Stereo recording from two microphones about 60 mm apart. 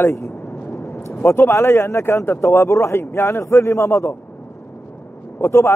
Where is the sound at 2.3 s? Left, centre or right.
Left.